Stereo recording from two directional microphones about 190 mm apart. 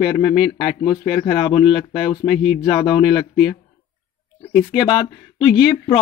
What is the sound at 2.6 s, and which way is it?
Speech, 25° left (ahead or behind).